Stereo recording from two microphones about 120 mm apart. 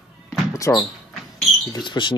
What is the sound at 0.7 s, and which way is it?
Speech, 20° left (ahead or behind).